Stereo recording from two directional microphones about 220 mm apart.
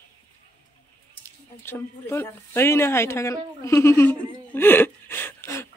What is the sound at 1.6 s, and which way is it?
Speech, 10° left (ahead or behind).